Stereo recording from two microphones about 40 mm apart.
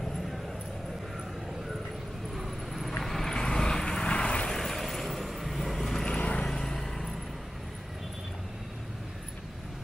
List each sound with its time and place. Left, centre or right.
2.3 s vehicle: centre; by 4.6 s left
4.6 s vehicle: centre
6.0 s vehicle: left
6.5 s vehicle: centre